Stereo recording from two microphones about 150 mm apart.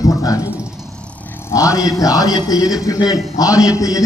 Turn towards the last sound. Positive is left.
turn(degrees=20)  # may be behind; listen again after turning